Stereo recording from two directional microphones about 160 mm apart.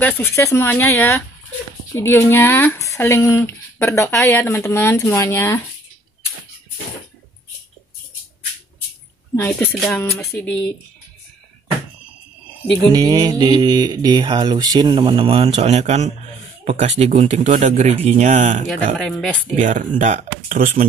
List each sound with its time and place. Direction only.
0.0 s speech: 15° left (ahead or behind)
9.3 s speech: 10° left (ahead or behind)
9.7 s a sound: centre (ahead or behind)
12.9 s speech: 25° right (ahead or behind); by 18.6 s 50° right (ahead or behind)
18.9 s a sound: centre (ahead or behind)
19.5 s speech: 50° right (ahead or behind)